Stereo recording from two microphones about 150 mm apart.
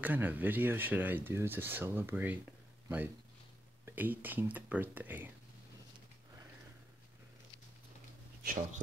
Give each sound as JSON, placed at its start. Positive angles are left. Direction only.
{"t": 0.0, "sound": "speech", "side_deg": -10}
{"t": 3.8, "sound": "speech", "side_deg": -10}
{"t": 8.5, "sound": "speech", "side_deg": -55}